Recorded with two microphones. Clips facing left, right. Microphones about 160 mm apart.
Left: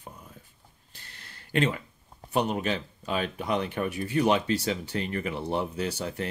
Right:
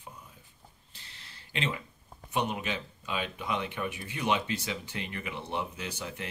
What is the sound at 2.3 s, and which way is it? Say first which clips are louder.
Speech: left 5 dB; 40° left (ahead or behind).